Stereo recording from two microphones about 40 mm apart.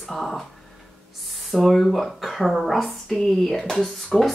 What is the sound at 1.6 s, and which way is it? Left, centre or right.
Speech, centre.